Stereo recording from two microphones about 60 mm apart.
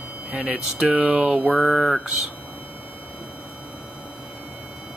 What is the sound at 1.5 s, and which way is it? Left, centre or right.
Speech, centre.